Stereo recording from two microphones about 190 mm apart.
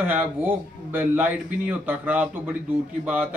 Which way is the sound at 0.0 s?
10° right (ahead or behind).